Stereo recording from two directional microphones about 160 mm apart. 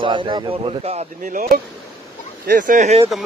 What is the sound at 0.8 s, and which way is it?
Speech, 40° right (ahead or behind).